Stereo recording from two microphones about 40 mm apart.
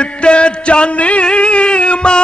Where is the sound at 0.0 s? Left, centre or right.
Left.